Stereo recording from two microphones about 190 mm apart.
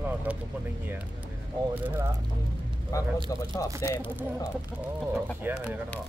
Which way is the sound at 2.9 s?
15° left (ahead or behind).